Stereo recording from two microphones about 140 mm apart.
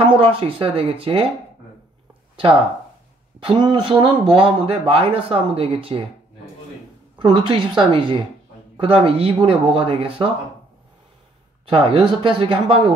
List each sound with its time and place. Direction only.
0.2 s speech: 40° right (ahead or behind)
3.4 s speech: 35° right (ahead or behind)
7.2 s speech: 35° right (ahead or behind)
11.7 s speech: 40° right (ahead or behind)